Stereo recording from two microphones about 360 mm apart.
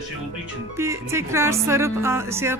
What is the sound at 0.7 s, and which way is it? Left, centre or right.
Speech, centre.